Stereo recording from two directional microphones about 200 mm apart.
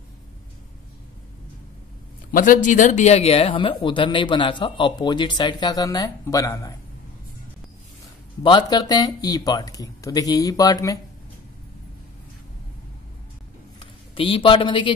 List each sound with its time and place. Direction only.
2.3 s speech: 40° left (ahead or behind); by 6.7 s 15° left (ahead or behind)
8.4 s speech: 20° left (ahead or behind)
13.7 s a man's voice: 25° left (ahead or behind)